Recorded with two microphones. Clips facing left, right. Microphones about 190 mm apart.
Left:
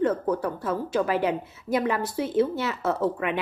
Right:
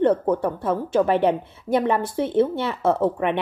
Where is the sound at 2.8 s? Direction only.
25° right (ahead or behind).